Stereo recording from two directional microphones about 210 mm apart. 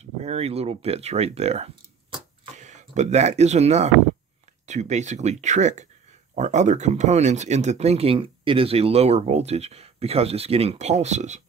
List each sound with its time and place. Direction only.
0.0 s speech: 30° right (ahead or behind)
2.1 s a sound: 35° right (ahead or behind)
4.6 s speech: 35° right (ahead or behind)